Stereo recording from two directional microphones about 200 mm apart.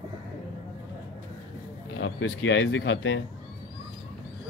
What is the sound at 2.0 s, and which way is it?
Speech, 65° left (ahead or behind).